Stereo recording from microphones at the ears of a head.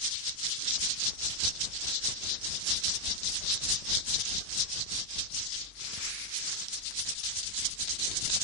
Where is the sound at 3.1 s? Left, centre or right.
Left.